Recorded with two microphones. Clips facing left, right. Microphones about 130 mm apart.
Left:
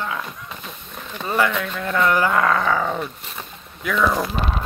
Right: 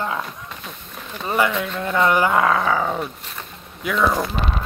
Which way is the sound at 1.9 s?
25° right (ahead or behind).